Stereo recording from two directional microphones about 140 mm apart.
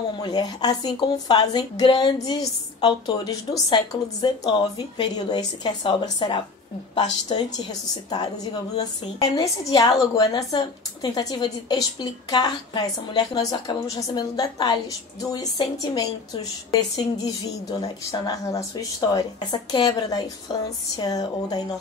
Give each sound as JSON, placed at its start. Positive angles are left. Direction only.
{"t": 0.1, "sound": "a woman's voice", "side_deg": 30}
{"t": 8.7, "sound": "a woman's voice", "side_deg": 25}
{"t": 17.7, "sound": "a woman's voice", "side_deg": 30}